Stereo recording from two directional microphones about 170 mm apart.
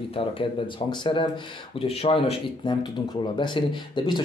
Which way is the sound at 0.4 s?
30° left (ahead or behind).